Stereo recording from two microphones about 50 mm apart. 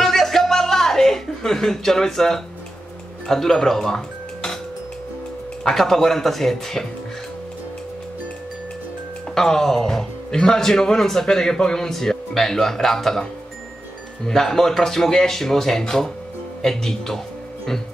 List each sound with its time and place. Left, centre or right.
0.0 s chuckle: centre
3.3 s speech: centre
5.6 s speech: centre
9.3 s speech: centre
14.2 s speech: centre